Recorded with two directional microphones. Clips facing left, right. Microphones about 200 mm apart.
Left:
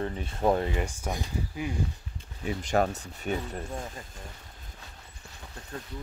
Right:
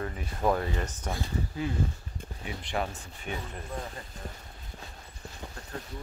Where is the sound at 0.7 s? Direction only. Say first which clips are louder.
Left 2 dB; 10° left (ahead or behind).